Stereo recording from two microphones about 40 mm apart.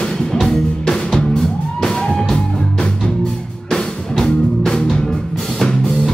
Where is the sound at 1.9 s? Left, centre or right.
Left.